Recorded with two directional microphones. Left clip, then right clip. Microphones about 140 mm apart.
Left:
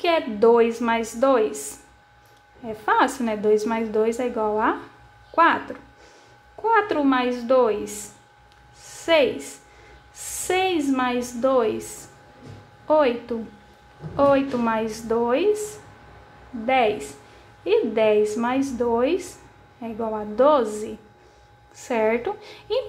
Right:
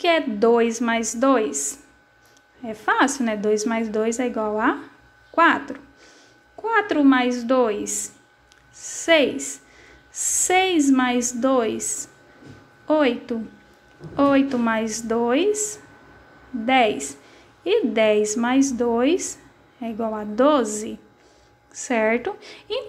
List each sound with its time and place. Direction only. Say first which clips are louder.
0.0 s a woman's voice: even; 30° right (ahead or behind)
8.7 s a sound: right 1 dB; 30° right (ahead or behind)
10.1 s a woman's voice: right 5 dB; 30° right (ahead or behind)